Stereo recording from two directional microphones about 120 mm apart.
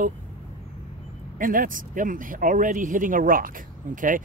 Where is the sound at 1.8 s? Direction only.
90° right.